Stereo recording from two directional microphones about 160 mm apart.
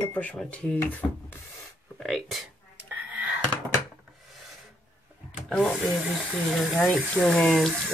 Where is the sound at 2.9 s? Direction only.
10° right (ahead or behind).